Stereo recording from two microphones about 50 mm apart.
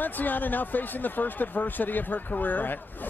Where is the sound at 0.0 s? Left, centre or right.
Left.